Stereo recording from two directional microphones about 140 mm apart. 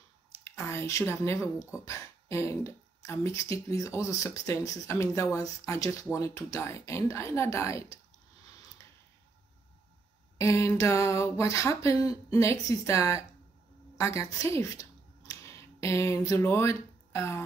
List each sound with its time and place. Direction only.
0.4 s speech: 20° left (ahead or behind)
10.3 s speech: 20° left (ahead or behind)